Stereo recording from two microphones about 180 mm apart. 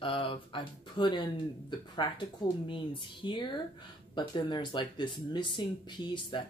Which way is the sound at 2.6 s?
25° left (ahead or behind).